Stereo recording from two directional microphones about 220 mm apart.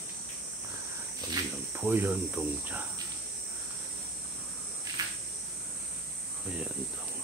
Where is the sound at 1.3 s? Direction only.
10° right (ahead or behind).